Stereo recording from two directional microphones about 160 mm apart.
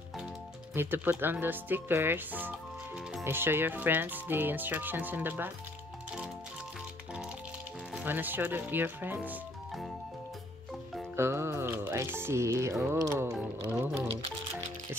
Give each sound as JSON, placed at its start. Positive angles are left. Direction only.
{"t": 0.7, "sound": "speech", "side_deg": -15}
{"t": 7.9, "sound": "speech", "side_deg": -10}
{"t": 11.1, "sound": "speech", "side_deg": -15}